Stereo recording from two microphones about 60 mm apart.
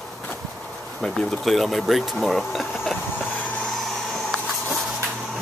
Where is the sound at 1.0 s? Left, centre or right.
Centre.